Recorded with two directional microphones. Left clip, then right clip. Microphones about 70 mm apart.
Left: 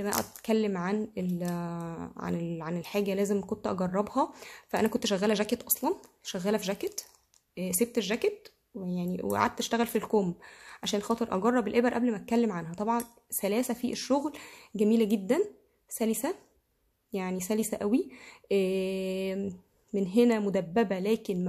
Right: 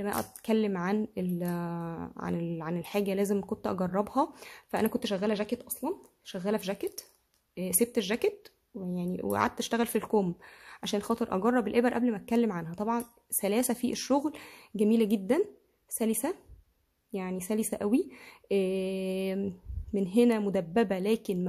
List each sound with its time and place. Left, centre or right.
0.4 s speech: right; by 5.9 s centre
6.4 s speech: centre
7.5 s speech: right
8.7 s speech: right
13.6 s speech: right
17.1 s speech: centre
17.6 s speech: right
18.5 s speech: centre; by 19.5 s right
19.9 s speech: right